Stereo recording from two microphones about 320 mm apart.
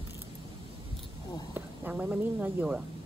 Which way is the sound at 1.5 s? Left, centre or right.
Centre.